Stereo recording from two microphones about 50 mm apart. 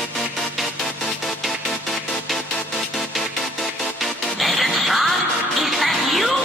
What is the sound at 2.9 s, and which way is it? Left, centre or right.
Music, centre.